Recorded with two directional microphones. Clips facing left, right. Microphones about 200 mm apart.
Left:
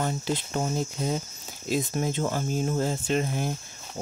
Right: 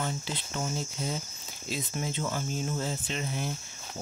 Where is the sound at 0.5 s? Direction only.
60° left (ahead or behind).